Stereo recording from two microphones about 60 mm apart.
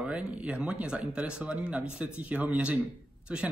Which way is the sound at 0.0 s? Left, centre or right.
Centre.